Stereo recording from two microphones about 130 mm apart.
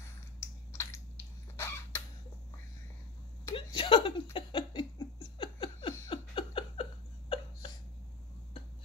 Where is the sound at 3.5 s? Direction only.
40° left (ahead or behind).